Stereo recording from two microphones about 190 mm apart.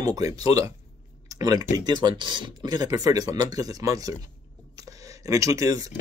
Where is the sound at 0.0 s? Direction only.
20° right (ahead or behind).